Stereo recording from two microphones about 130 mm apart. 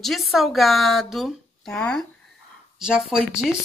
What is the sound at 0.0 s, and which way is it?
Speech, centre (ahead or behind).